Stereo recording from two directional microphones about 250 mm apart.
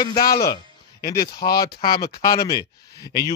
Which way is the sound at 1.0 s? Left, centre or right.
Left.